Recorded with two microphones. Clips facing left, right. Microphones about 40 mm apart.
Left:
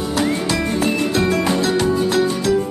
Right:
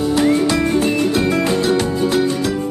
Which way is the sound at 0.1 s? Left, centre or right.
Centre.